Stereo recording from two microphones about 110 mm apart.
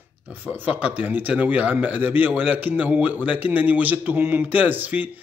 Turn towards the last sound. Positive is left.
turn(degrees=-15)  # may be behind; listen again after turning